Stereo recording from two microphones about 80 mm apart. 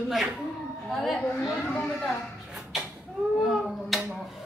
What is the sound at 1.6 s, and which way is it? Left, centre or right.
Speech, centre.